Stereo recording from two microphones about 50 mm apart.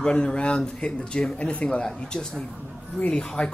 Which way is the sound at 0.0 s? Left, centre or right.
Centre.